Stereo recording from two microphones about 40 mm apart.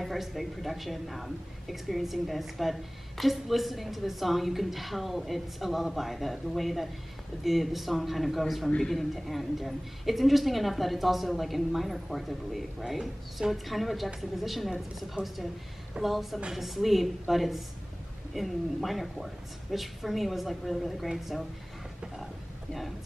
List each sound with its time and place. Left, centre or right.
0.0 s a woman's voice: centre
8.6 s speech: centre
8.9 s a woman's voice: centre